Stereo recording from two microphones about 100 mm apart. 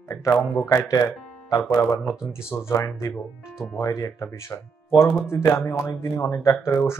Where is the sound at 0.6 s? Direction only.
35° left (ahead or behind).